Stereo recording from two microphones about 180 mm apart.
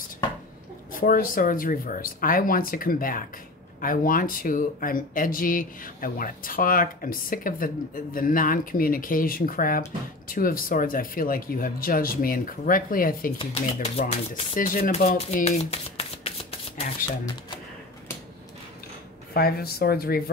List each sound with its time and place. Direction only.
0.9 s speech: 50° left (ahead or behind)
13.7 s speech: 35° left (ahead or behind)
14.6 s speech: 55° left (ahead or behind)
15.3 s shuffling cards: 40° left (ahead or behind)
19.3 s speech: 60° left (ahead or behind)